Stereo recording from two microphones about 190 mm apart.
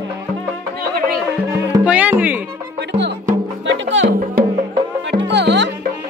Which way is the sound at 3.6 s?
75° right (ahead or behind).